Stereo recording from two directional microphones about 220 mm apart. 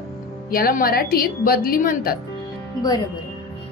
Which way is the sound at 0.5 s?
40° left (ahead or behind).